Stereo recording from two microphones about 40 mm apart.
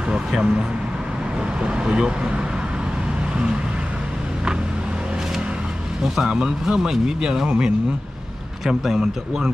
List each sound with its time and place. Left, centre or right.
0.3 s speech: centre
6.2 s speech: centre
8.8 s speech: centre